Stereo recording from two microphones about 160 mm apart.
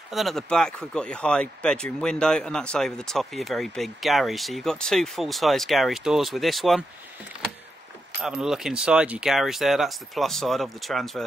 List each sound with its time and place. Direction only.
0.1 s speech: centre (ahead or behind)
8.2 s speech: 5° right (ahead or behind)